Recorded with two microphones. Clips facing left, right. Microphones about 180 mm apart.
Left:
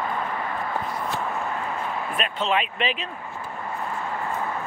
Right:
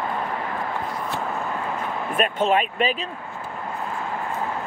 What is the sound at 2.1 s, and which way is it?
Speech, 50° right (ahead or behind).